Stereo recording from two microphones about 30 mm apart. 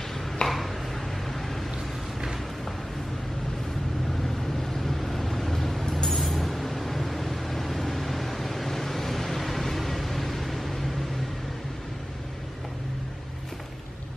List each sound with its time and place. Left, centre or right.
0.4 s a sound: left
1.3 s vehicle: centre
4.6 s vehicle: centre